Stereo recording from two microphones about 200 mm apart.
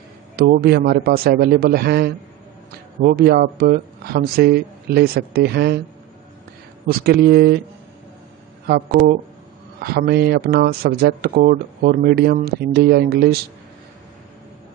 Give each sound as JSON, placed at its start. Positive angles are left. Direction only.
{"t": 0.4, "sound": "speech", "side_deg": -50}
{"t": 6.9, "sound": "speech", "side_deg": -50}
{"t": 8.6, "sound": "speech", "side_deg": -50}